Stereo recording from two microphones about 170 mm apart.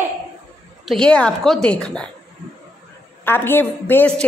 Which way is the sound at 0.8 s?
5° left (ahead or behind).